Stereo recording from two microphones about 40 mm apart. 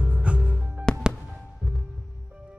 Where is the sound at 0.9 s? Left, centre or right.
Left.